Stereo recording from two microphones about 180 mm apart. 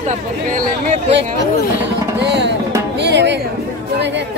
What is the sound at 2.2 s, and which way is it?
Music, 75° right (ahead or behind).